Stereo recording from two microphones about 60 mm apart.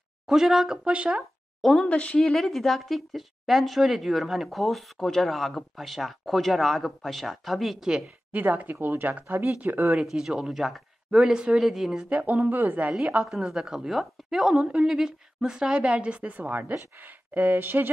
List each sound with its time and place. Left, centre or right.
0.3 s a woman's voice: centre
0.8 s speech: centre
1.6 s speech: centre
1.9 s speech: left
2.1 s speech: centre
7.9 s speech: right
9.9 s a woman's voice: centre
11.1 s a woman's voice: centre
12.1 s speech: right
13.2 s a woman's voice: centre; by 17.9 s right